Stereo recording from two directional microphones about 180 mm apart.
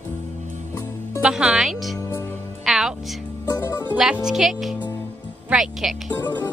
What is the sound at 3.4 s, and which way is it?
Music, 15° left (ahead or behind).